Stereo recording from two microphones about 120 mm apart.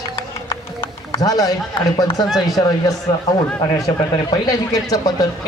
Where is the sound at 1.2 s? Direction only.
30° left (ahead or behind).